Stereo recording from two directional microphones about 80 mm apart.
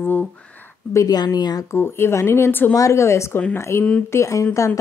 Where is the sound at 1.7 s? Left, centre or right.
Left.